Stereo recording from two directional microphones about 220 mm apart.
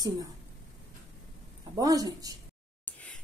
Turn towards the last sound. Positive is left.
turn(degrees=5)  # may be behind; listen again after turning